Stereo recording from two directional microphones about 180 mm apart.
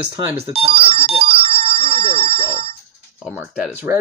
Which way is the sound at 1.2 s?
30° right (ahead or behind).